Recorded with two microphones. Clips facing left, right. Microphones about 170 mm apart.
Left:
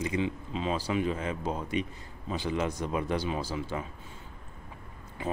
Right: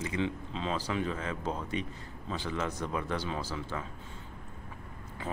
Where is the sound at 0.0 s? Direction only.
15° left (ahead or behind).